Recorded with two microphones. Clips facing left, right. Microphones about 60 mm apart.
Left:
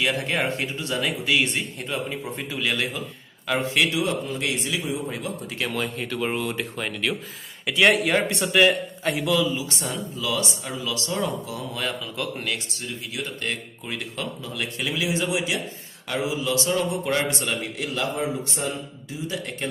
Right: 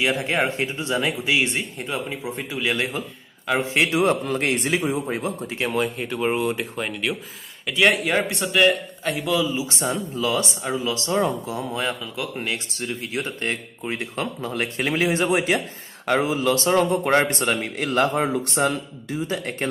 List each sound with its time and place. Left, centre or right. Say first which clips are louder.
0.6 s speech: right 3 dB; right
2.2 s speech: right 2 dB; centre
2.7 s speech: right 2 dB; right
4.0 s speech: right 5 dB; right; by 9.5 s centre
9.6 s a man's voice: right 4 dB; right
19.2 s speech: right 2 dB; right